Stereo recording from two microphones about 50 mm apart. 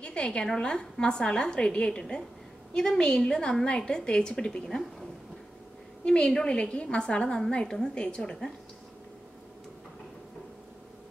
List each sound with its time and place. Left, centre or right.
0.0 s a woman's voice: centre
6.0 s a woman's voice: centre